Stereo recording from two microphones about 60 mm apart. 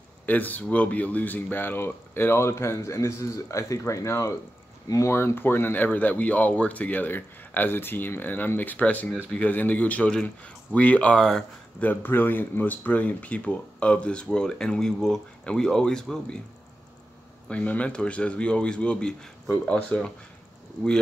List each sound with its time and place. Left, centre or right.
0.3 s speech: left
5.0 s speech: left
11.1 s speech: centre
11.8 s speech: left; by 16.3 s centre
17.5 s speech: left